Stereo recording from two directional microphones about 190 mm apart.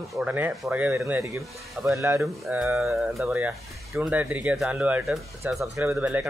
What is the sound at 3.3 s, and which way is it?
Speech, 15° right (ahead or behind).